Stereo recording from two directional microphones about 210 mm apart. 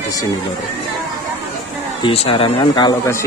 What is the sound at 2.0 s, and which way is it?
Speech, 25° left (ahead or behind).